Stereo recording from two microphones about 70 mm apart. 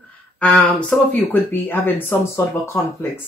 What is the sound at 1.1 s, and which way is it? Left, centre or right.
Speech, left.